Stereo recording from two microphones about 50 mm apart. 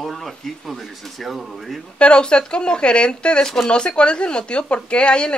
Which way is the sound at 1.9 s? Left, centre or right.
Left.